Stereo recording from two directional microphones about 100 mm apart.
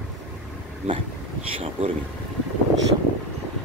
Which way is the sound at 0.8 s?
90° right.